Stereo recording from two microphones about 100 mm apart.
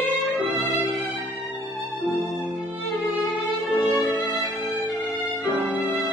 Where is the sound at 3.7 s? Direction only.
Centre (ahead or behind).